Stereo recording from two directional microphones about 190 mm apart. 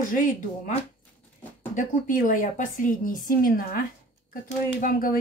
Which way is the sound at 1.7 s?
45° left (ahead or behind).